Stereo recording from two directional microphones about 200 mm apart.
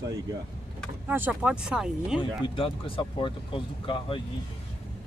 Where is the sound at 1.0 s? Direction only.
10° right (ahead or behind).